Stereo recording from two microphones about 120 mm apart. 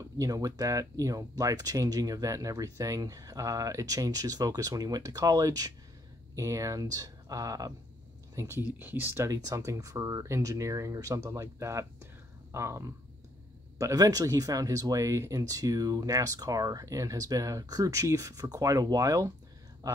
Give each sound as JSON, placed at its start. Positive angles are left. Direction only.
{"t": 0.2, "sound": "speech", "side_deg": -30}